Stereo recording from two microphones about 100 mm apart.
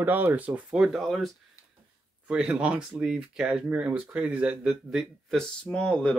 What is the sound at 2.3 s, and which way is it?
Speech, 10° right (ahead or behind).